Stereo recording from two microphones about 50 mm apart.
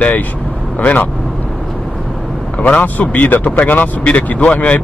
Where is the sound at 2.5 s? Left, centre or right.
Left.